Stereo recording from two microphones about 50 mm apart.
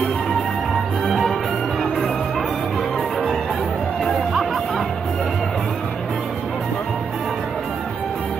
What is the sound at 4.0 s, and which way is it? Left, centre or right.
Music, centre.